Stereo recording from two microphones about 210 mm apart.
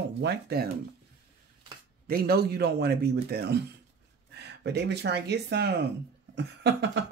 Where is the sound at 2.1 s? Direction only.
50° right (ahead or behind).